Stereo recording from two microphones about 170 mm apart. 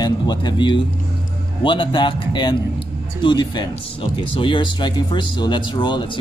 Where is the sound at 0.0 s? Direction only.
25° left (ahead or behind).